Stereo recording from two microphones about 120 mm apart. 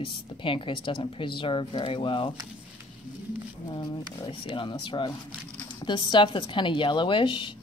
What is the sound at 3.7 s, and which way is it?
A woman's voice, 45° left (ahead or behind).